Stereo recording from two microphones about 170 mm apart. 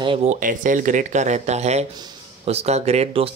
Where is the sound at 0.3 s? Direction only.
50° right (ahead or behind).